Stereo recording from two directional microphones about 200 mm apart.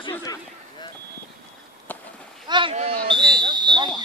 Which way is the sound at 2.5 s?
25° right (ahead or behind).